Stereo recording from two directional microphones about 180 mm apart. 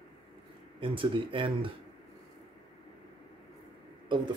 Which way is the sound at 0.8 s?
30° right (ahead or behind).